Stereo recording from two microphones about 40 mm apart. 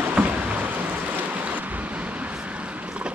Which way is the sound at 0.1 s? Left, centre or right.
Right.